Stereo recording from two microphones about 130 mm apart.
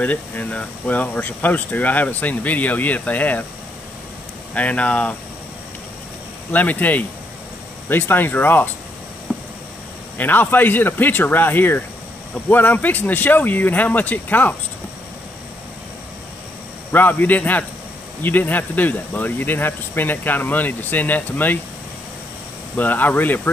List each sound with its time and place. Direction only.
0.0 s speech: 10° left (ahead or behind)
4.6 s speech: 10° left (ahead or behind)
6.5 s speech: 10° left (ahead or behind)
10.1 s speech: 15° left (ahead or behind)
16.9 s speech: 15° left (ahead or behind)
22.8 s speech: 15° left (ahead or behind)